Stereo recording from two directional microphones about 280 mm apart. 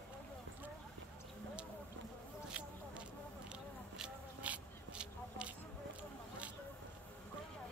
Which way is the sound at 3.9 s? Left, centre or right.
Centre.